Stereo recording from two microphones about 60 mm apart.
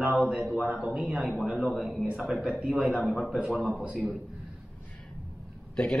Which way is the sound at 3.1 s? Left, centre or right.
Centre.